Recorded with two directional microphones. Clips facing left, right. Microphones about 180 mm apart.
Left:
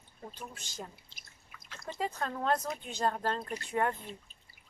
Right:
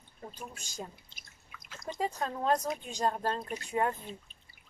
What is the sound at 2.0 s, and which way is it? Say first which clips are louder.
Speech: right 1 dB; 15° right (ahead or behind).